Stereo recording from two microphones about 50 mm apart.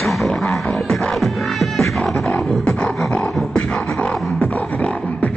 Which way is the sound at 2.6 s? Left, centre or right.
Left.